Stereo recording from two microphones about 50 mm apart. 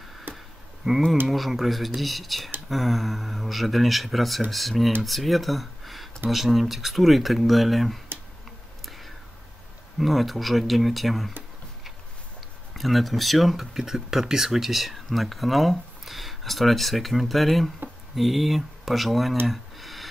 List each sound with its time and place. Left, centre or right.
0.3 s a sound: right
1.2 s speech: centre
8.5 s whispering: centre
9.9 s speech: centre
12.7 s speech: centre
19.4 s a sound: centre